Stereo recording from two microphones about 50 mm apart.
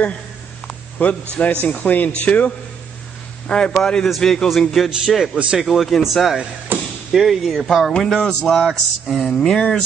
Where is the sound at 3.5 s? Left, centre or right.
Centre.